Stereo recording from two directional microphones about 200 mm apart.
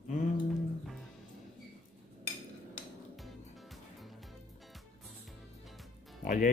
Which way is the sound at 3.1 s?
Centre (ahead or behind).